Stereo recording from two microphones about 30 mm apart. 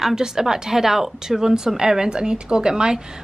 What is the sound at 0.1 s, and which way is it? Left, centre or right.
A woman's voice, right.